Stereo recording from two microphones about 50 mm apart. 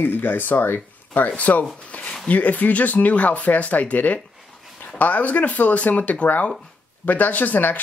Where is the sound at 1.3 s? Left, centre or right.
Left.